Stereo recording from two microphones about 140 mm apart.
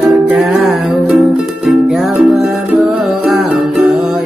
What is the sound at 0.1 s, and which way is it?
Music, centre (ahead or behind).